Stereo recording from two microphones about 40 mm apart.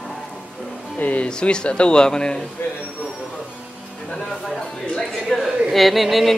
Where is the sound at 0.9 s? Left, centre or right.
Left.